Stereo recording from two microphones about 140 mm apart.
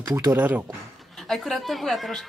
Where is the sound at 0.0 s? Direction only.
20° right (ahead or behind).